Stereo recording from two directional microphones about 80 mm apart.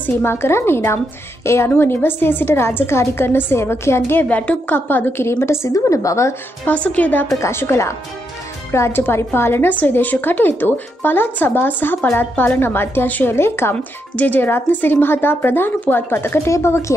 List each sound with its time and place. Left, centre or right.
0.0 s a woman's voice: left
4.2 s a woman's voice: centre; by 6.3 s left
6.6 s a woman's voice: centre
7.3 s a woman's voice: left